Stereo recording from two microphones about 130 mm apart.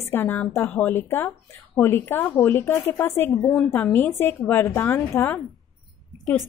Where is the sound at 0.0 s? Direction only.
15° left (ahead or behind).